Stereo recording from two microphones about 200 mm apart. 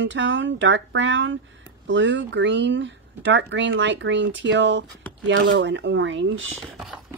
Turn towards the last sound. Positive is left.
turn(degrees=0)  # may be behind; listen again after turning